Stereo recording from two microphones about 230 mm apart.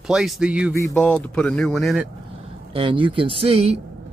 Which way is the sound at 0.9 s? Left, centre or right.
Centre.